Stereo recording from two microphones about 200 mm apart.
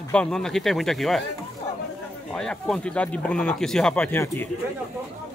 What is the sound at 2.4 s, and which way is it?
Speech, 5° left (ahead or behind).